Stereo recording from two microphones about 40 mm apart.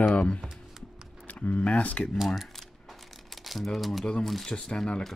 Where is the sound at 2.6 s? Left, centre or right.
Centre.